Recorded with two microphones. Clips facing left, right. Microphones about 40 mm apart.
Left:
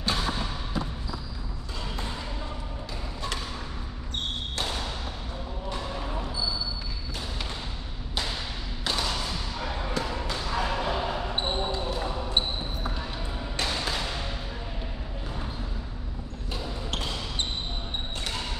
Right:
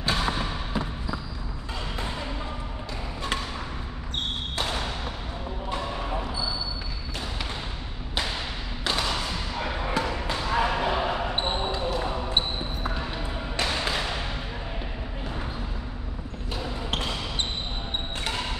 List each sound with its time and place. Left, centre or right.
0.0 s a sound: right
5.9 s basketball bounce: right
8.8 s thump: right
10.1 s basketball bounce: right